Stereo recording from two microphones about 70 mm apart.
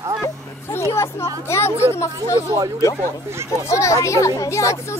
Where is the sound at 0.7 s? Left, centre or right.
Left.